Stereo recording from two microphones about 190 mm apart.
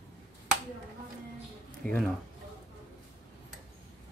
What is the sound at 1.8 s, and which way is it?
Speech, 5° left (ahead or behind).